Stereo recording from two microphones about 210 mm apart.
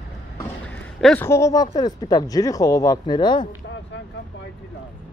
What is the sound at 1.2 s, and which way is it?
Speech, 15° left (ahead or behind).